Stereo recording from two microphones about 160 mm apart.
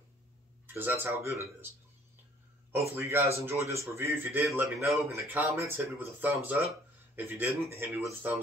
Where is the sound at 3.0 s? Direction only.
15° right (ahead or behind).